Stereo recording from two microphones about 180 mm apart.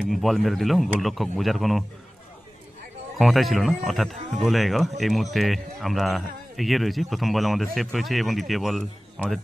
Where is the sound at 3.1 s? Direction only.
Centre (ahead or behind).